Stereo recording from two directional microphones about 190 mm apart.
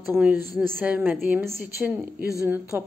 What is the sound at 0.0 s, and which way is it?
A woman's voice, 10° right (ahead or behind).